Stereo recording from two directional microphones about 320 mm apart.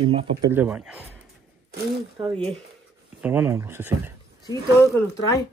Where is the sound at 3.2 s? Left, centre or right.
Centre.